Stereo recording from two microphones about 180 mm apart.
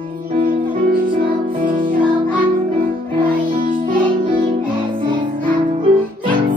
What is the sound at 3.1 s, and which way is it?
Music, 25° right (ahead or behind).